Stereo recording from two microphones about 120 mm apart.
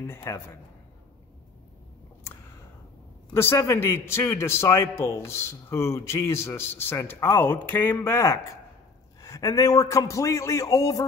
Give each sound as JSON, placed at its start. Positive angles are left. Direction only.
{"t": 0.0, "sound": "a man's voice", "side_deg": 20}
{"t": 3.3, "sound": "a man's voice", "side_deg": 20}